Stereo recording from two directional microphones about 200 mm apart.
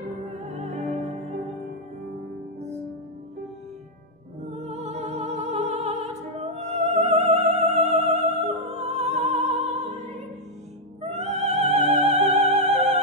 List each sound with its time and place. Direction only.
4.5 s music: 35° right (ahead or behind)
11.0 s music: 35° right (ahead or behind)